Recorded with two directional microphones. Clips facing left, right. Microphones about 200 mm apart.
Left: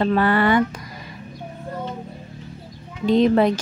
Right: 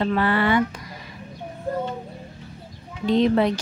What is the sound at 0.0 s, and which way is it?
Speech, 45° left (ahead or behind).